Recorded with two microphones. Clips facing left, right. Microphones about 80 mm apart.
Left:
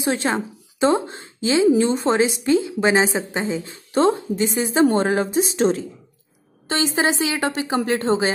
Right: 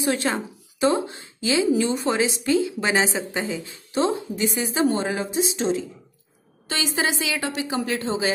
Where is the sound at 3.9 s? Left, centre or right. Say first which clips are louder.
Left 5 dB; left.